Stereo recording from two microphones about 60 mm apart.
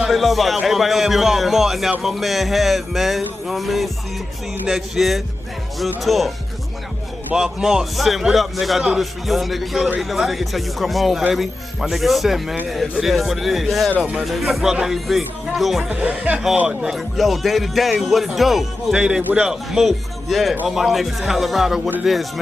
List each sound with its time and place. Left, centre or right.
0.0 s speech: centre
7.3 s speech: centre
13.9 s speech: right
14.2 s speech: centre
15.8 s speech: right
16.6 s speech: centre
18.9 s speech: centre